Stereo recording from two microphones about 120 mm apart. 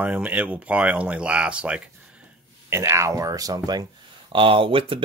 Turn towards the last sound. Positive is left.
turn(degrees=-50)  # may be behind; listen again after turning